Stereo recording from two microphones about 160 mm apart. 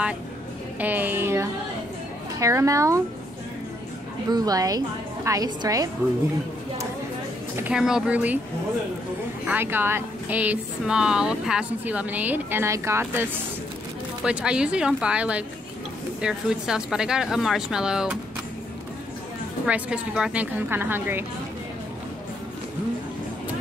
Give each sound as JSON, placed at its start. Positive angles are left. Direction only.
{"t": 0.7, "sound": "a woman's voice", "side_deg": -10}
{"t": 4.3, "sound": "a woman's voice", "side_deg": -25}
{"t": 7.5, "sound": "speech", "side_deg": -5}
{"t": 9.5, "sound": "speech", "side_deg": -15}
{"t": 19.6, "sound": "speech", "side_deg": -5}